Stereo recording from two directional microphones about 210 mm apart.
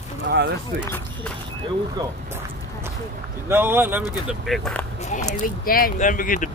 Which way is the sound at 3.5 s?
10° right (ahead or behind).